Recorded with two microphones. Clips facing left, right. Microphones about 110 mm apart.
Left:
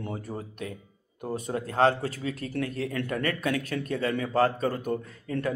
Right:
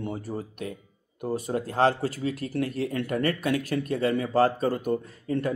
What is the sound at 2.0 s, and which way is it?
Speech, 35° right (ahead or behind).